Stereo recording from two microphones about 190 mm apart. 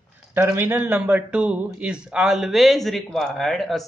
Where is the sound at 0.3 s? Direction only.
15° right (ahead or behind).